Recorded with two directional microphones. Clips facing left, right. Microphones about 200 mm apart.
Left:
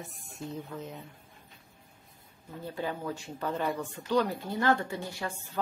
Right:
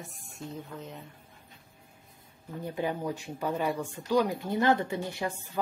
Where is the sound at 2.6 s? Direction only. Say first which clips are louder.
Right 3 dB; 15° right (ahead or behind).